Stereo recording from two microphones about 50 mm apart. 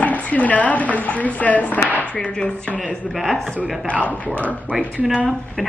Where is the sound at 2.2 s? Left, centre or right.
Centre.